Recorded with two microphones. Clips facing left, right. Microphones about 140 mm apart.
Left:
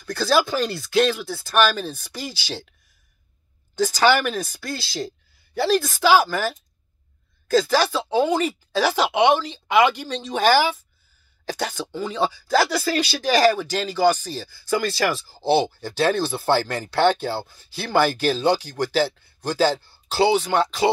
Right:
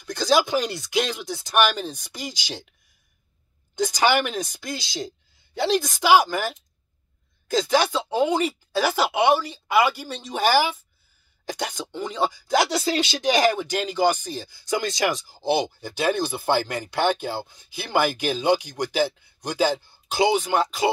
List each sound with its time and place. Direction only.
0.0 s speech: 15° right (ahead or behind)
3.7 s speech: 20° right (ahead or behind)